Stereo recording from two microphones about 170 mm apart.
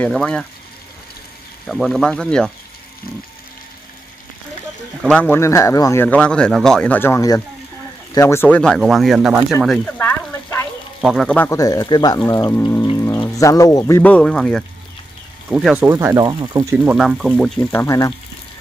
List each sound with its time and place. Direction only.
0.0 s speech: 5° left (ahead or behind)
1.7 s speech: centre (ahead or behind)
5.0 s speech: 10° left (ahead or behind)
6.0 s speech: 5° left (ahead or behind)
11.0 s speech: centre (ahead or behind)
11.4 s speech: 20° left (ahead or behind)
12.5 s speech: 10° left (ahead or behind)
12.9 s rain on surface: 15° left (ahead or behind)
13.4 s speech: 20° left (ahead or behind)
15.5 s speech: 5° right (ahead or behind)
16.7 s speech: 5° right (ahead or behind)
17.6 s speech: 15° left (ahead or behind)